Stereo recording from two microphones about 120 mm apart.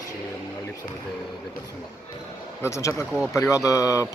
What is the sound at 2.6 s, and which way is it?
Mantra, 25° left (ahead or behind).